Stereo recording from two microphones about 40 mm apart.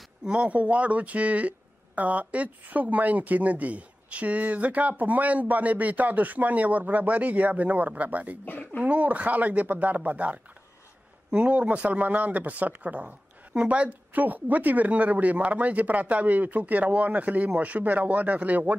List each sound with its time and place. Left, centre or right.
0.3 s speech: right
8.5 s speech: left
8.8 s speech: right